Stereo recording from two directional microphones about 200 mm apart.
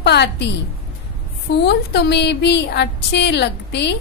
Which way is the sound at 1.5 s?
55° left (ahead or behind).